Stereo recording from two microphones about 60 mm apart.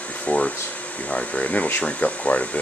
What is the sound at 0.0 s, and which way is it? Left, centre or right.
Air conditioning, left.